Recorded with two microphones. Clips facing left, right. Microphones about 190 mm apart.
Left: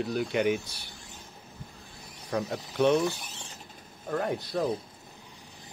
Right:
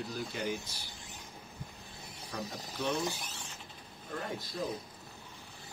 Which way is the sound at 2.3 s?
65° left (ahead or behind).